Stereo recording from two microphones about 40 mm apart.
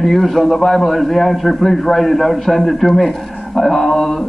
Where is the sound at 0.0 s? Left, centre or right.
Centre.